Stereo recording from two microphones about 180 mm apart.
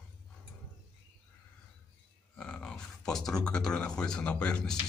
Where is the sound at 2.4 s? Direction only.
5° left (ahead or behind).